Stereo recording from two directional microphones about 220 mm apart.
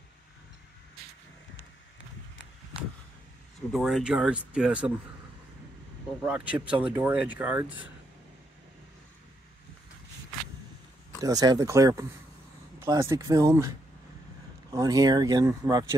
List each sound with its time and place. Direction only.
3.7 s speech: centre (ahead or behind)
6.2 s speech: 5° right (ahead or behind)
11.1 s speech: 15° right (ahead or behind)
14.7 s speech: 15° right (ahead or behind)